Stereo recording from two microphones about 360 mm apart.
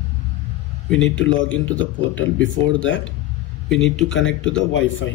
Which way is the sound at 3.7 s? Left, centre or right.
Centre.